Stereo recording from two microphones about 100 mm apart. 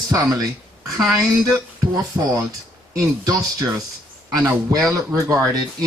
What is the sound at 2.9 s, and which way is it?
Speech, 35° right (ahead or behind).